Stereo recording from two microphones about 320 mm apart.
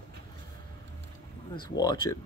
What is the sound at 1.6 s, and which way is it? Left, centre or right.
Speech, centre.